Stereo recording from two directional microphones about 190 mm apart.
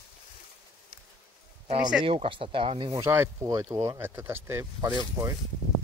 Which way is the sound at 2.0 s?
30° right (ahead or behind).